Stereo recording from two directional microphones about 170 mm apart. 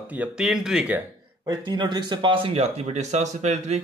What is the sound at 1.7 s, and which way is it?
Speech, 25° right (ahead or behind).